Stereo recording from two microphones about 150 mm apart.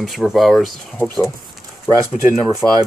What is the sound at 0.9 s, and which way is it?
Speech, 15° left (ahead or behind).